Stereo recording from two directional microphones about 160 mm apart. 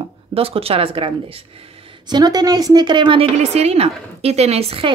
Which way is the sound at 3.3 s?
40° right (ahead or behind).